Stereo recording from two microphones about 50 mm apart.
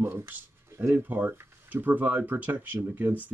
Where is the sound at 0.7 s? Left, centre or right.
Right.